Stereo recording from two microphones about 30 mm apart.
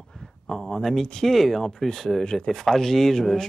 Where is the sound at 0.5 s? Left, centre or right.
Left.